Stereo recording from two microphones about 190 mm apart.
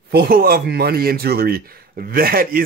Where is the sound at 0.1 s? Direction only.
50° right (ahead or behind).